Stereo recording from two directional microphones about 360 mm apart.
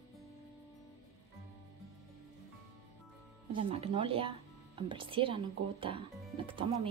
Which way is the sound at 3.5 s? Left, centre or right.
Centre.